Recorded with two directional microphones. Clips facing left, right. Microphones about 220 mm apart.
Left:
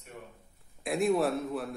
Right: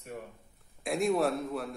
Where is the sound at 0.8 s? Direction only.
Centre (ahead or behind).